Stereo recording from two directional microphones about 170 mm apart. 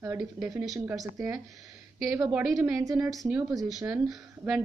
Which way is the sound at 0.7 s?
20° right (ahead or behind).